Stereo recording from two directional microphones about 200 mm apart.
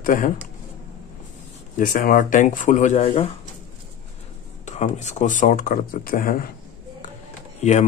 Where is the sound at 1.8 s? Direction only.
40° left (ahead or behind).